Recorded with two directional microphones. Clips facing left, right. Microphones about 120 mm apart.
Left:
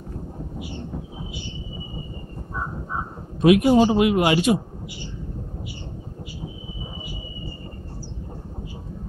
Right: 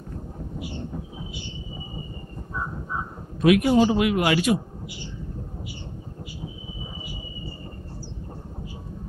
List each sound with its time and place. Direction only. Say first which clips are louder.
3.3 s speech: left 3 dB; 25° left (ahead or behind)